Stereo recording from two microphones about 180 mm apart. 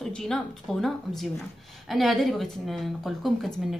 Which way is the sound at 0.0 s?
5° left (ahead or behind).